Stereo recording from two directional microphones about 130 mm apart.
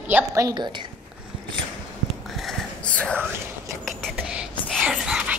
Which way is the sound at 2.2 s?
Centre (ahead or behind).